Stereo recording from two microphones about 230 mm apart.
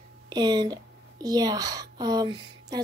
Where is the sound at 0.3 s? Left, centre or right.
Centre.